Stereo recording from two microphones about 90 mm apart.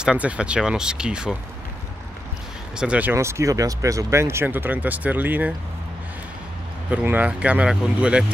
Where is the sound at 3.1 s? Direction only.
35° right (ahead or behind).